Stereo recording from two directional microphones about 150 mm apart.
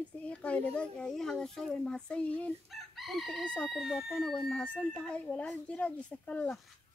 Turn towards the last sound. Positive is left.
turn(degrees=10)  # may be behind; listen again after turning